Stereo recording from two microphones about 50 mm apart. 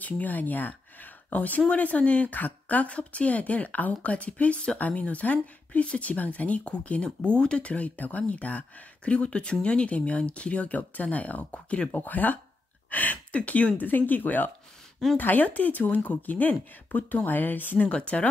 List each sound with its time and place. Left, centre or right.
0.0 s speech: left
12.0 s speech: left